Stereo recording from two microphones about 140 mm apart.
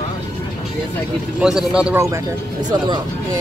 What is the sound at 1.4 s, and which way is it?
Speech, 5° right (ahead or behind).